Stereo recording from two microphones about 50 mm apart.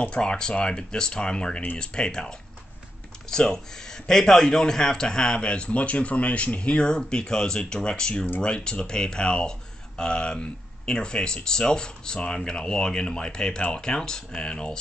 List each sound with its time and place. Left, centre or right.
0.0 s speech: left